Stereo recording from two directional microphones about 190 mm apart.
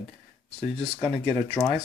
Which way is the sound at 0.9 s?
5° left (ahead or behind).